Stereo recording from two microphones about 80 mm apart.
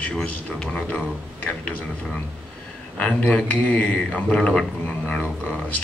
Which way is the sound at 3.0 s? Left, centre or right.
Centre.